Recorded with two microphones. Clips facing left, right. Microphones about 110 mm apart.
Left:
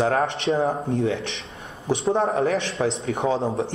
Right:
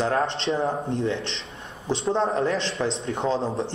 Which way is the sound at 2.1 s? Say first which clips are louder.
Left 1 dB; 15° left (ahead or behind).